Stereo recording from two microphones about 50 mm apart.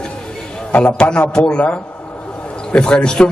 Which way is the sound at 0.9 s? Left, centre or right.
Centre.